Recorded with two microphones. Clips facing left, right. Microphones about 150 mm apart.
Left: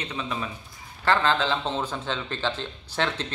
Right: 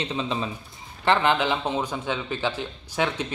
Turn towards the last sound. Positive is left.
turn(degrees=-10)  # may be behind; listen again after turning